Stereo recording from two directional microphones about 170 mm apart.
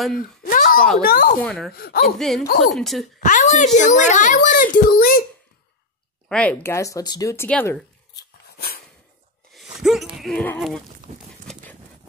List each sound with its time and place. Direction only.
0.1 s a sound: 55° left (ahead or behind)
1.0 s speech: 60° left (ahead or behind)
1.4 s speech: 5° left (ahead or behind)
1.7 s speech: 65° left (ahead or behind)
2.1 s speech: centre (ahead or behind)
3.2 s a child's voice: 50° left (ahead or behind)
6.2 s speech: 5° left (ahead or behind)
7.4 s speech: 10° left (ahead or behind)
8.5 s dog: 65° left (ahead or behind)
9.5 s a sound: centre (ahead or behind)